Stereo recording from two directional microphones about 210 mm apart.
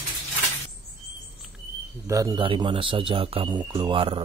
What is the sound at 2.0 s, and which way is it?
A man's voice, 15° right (ahead or behind).